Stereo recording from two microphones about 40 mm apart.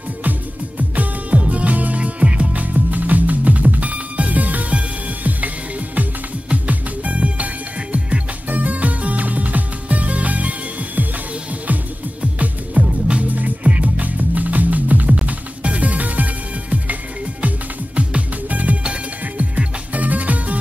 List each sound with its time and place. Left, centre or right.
0.7 s music: right
6.5 s music: right
8.5 s music: right
12.2 s music: right
13.3 s music: right
17.9 s music: right